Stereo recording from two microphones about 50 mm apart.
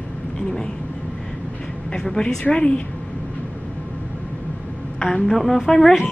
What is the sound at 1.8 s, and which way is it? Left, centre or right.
A woman's voice, centre.